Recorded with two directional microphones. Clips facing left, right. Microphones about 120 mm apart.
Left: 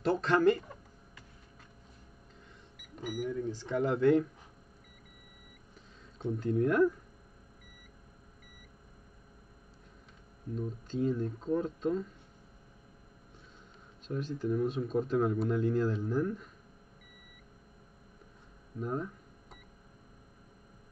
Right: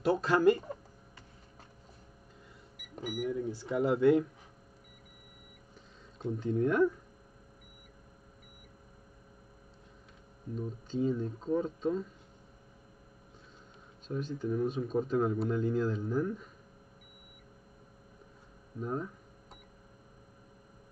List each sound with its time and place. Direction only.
0.0 s speech: 5° right (ahead or behind)
0.6 s a sound: 35° right (ahead or behind)
3.1 s speech: 15° right (ahead or behind)
6.3 s speech: centre (ahead or behind)
10.5 s speech: 5° right (ahead or behind)
14.0 s speech: centre (ahead or behind)
18.8 s cash register: centre (ahead or behind)